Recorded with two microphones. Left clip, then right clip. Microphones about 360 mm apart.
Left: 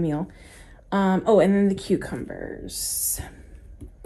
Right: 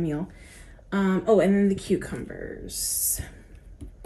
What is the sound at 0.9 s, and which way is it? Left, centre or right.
A woman's voice, centre.